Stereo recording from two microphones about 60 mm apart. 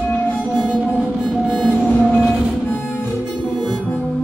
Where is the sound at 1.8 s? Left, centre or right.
Left.